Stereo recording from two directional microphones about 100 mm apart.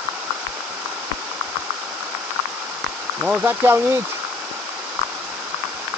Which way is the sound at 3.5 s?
25° right (ahead or behind).